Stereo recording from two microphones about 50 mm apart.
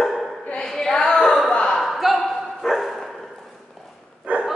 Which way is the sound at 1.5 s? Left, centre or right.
Centre.